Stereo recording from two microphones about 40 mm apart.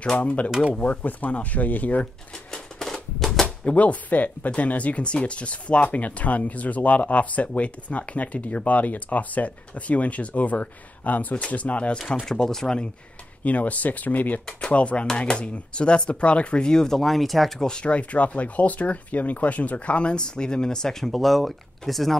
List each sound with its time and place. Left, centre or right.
0.1 s speech: left
2.3 s typewriter: centre
3.4 s speech: left
12.3 s speech: centre
13.4 s speech: left
14.7 s speech: left
16.6 s speech: centre
17.6 s speech: left; by 22.2 s centre